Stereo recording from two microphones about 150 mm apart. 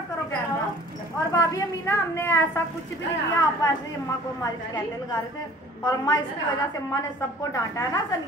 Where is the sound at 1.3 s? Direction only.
20° left (ahead or behind).